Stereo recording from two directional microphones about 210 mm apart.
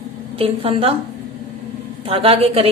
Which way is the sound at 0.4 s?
25° right (ahead or behind).